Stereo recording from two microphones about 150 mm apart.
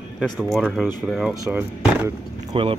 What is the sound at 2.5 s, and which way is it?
Speech, 35° right (ahead or behind).